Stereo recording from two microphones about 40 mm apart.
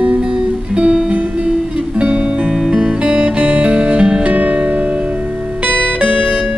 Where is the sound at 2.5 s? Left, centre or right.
Centre.